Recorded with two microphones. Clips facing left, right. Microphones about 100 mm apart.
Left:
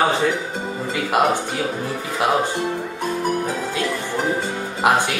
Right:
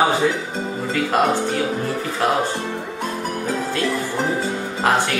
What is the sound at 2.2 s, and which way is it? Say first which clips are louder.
Speech: left 1 dB; 15° left (ahead or behind).